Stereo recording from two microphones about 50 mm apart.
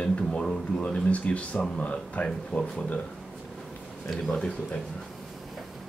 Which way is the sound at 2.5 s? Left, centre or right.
Left.